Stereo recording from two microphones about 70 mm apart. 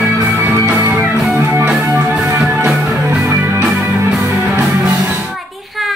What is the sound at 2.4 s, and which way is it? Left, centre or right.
Music, right.